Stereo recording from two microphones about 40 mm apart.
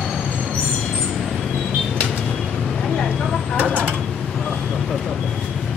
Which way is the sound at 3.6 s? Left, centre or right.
Left.